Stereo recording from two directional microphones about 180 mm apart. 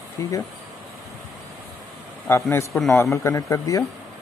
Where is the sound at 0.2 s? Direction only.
15° left (ahead or behind).